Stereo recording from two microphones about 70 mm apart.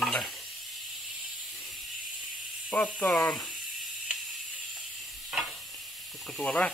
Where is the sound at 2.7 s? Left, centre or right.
Centre.